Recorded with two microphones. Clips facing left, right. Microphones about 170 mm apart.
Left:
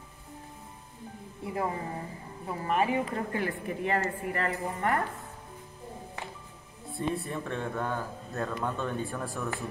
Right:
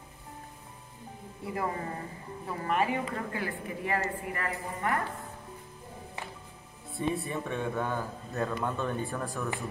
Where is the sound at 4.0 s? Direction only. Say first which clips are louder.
Left 3 dB; 35° left (ahead or behind).